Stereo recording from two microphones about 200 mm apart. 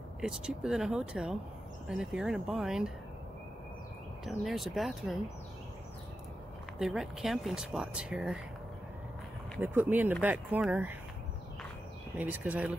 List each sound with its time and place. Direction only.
0.2 s speech: 5° right (ahead or behind)
4.3 s speech: centre (ahead or behind)
6.8 s speech: centre (ahead or behind)
9.6 s speech: 10° right (ahead or behind)
12.2 s speech: 10° right (ahead or behind)